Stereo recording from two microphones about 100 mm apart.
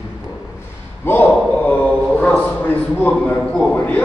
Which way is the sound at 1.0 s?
20° left (ahead or behind).